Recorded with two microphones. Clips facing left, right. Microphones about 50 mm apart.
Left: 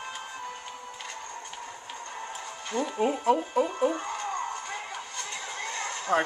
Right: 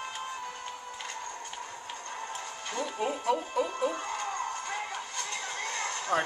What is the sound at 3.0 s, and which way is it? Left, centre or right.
Speech, centre.